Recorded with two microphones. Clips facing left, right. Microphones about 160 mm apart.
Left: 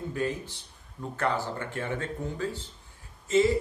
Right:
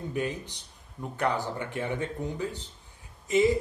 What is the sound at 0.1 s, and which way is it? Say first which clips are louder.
Speech: even; 20° right (ahead or behind).